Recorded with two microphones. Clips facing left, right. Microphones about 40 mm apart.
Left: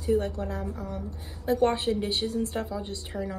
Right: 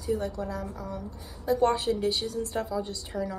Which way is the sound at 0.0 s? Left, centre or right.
Left.